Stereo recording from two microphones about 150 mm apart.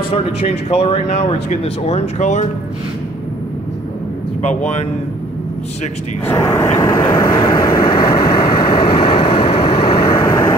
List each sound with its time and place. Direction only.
0.1 s speech: 40° left (ahead or behind)
4.4 s speech: 50° left (ahead or behind)
6.2 s vehicle: 15° left (ahead or behind)